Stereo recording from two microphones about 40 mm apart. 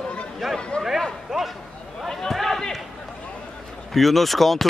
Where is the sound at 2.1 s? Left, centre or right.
Centre.